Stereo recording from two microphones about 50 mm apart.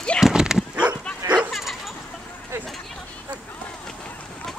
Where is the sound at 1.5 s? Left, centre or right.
Centre.